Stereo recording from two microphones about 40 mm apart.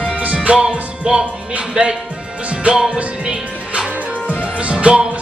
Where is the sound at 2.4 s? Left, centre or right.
Right.